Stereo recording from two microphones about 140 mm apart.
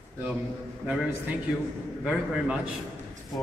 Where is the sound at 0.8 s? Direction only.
10° right (ahead or behind).